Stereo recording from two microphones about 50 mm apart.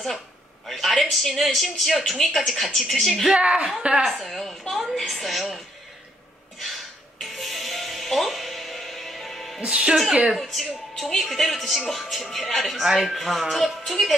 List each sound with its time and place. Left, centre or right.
0.7 s speech: centre
3.3 s a woman's voice: right
4.1 s speech: centre
7.2 s music: centre
9.6 s speech: centre
10.4 s speech: centre